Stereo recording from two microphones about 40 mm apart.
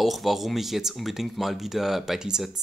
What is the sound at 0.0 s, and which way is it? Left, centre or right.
Speech, centre.